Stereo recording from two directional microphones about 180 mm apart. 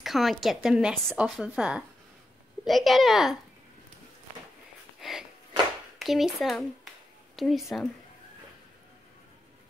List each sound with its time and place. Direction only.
0.0 s a woman's voice: centre (ahead or behind)
5.0 s a sound: centre (ahead or behind)
5.9 s a woman's voice: centre (ahead or behind)